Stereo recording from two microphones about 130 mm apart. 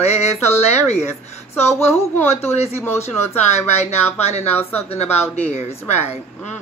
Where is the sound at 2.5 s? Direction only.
55° left (ahead or behind).